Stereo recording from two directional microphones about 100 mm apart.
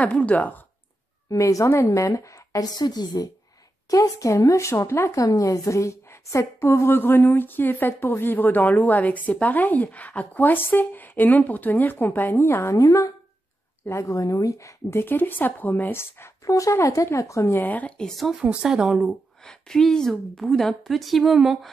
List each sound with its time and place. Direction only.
0.0 s speech: 15° left (ahead or behind)
1.3 s a woman's voice: 35° left (ahead or behind)
12.7 s a woman's voice: 35° left (ahead or behind)
17.6 s a woman's voice: 15° left (ahead or behind); by 19.0 s 5° right (ahead or behind)
19.0 s a woman's voice: 5° left (ahead or behind)